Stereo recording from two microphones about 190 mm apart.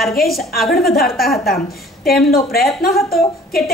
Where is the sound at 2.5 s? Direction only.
55° left (ahead or behind).